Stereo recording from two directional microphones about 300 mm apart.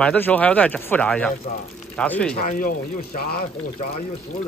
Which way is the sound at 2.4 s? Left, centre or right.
Left.